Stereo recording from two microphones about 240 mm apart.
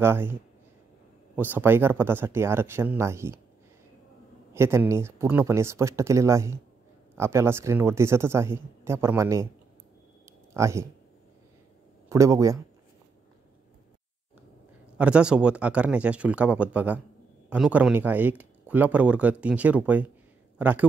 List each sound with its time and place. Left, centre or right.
0.0 s speech: centre
4.6 s speech: centre
10.5 s speech: centre
12.1 s speech: centre
15.0 s speech: centre